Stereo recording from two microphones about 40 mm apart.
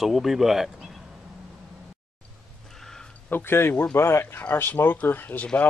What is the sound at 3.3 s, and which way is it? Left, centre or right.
Speech, left.